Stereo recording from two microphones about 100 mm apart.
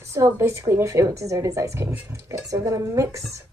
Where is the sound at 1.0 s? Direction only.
30° right (ahead or behind).